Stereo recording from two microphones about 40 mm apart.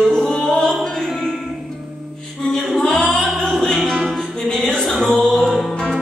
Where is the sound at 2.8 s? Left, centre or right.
Centre.